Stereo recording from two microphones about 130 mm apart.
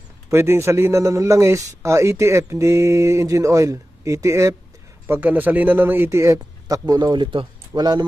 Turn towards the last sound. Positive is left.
turn(degrees=-30)  # may be behind; listen again after turning